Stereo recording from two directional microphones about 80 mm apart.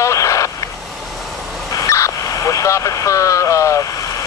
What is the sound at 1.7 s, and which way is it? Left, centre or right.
Vehicle, left.